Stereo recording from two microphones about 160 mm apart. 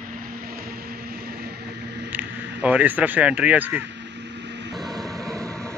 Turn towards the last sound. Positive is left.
turn(degrees=5)  # may be behind; listen again after turning